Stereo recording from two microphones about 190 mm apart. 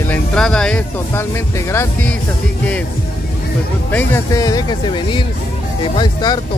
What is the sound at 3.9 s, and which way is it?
Speech, 15° left (ahead or behind).